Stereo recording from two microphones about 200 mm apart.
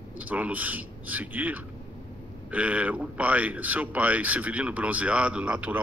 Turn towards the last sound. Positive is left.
turn(degrees=-5)  # may be behind; listen again after turning